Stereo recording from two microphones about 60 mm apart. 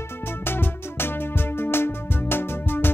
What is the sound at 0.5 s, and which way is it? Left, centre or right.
Music, left.